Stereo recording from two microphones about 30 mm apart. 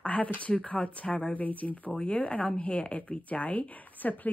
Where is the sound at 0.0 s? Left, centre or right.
Left.